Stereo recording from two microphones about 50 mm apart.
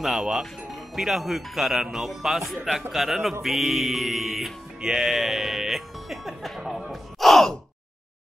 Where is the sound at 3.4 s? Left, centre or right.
Centre.